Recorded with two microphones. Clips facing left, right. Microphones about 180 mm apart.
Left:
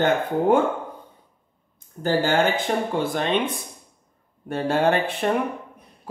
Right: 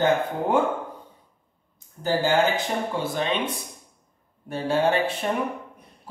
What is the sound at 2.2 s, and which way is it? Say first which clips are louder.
Speech: right 2 dB; 55° left (ahead or behind).